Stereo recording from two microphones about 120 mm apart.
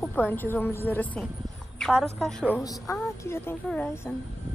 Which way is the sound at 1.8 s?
5° left (ahead or behind).